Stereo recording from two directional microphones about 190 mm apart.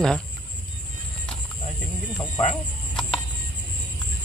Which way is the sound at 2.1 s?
20° left (ahead or behind).